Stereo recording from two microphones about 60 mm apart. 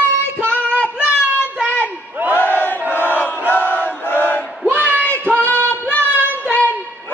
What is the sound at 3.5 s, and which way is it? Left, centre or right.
Chant, left.